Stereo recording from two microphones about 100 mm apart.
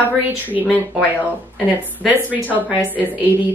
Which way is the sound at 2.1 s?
15° right (ahead or behind).